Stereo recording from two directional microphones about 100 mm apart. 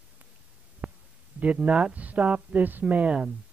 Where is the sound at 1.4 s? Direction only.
15° right (ahead or behind).